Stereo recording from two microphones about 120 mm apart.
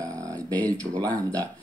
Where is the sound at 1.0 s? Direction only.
30° right (ahead or behind).